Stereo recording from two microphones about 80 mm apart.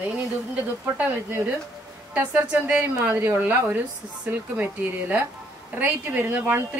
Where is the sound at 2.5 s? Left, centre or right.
Right.